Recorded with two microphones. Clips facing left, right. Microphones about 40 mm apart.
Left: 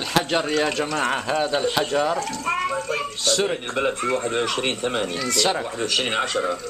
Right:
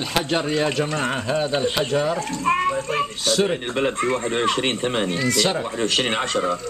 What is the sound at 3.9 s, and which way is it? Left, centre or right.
A child's voice, right.